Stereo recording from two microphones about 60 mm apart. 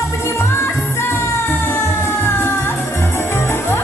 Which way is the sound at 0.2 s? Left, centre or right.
Left.